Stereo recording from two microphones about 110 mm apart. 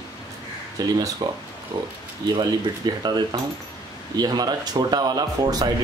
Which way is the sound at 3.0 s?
35° right (ahead or behind).